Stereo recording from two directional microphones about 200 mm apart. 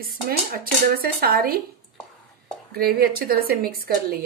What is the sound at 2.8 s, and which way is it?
A woman's voice, 50° right (ahead or behind).